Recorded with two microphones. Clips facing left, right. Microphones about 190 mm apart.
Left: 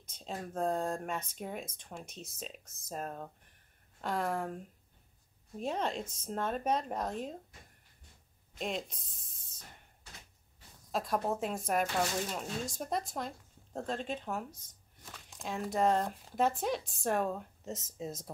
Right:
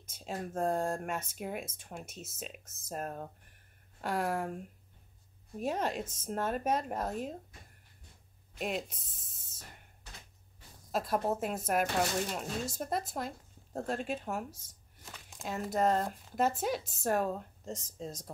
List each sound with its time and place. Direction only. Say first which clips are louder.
0.0 s speech: right 2 dB; 5° right (ahead or behind)
8.5 s speech: right 1 dB; 5° right (ahead or behind)
10.9 s speech: right 1 dB; 5° right (ahead or behind)